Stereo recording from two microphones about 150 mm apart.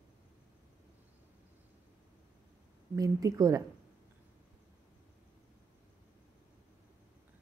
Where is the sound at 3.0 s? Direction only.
25° right (ahead or behind).